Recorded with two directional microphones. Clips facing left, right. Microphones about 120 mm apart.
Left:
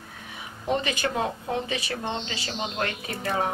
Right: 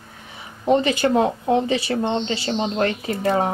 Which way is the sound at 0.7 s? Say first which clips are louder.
Right 9 dB; 35° right (ahead or behind).